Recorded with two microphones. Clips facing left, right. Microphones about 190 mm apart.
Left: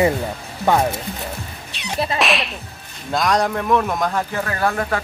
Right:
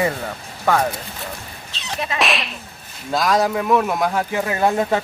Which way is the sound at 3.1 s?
5° right (ahead or behind).